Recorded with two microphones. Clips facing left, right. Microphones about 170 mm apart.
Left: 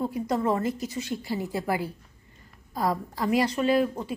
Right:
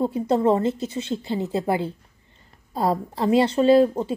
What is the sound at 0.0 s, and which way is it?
Speech, 25° right (ahead or behind).